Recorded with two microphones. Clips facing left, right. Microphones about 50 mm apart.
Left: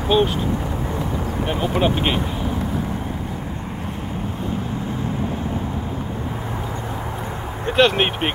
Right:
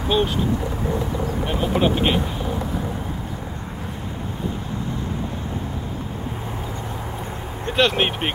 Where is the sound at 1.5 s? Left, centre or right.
Centre.